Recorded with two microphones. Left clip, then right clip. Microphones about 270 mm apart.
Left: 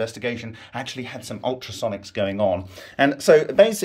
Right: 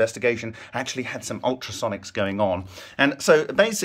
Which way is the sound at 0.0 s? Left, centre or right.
Centre.